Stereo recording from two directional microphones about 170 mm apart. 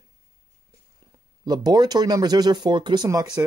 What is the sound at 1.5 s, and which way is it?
Speech, 25° right (ahead or behind).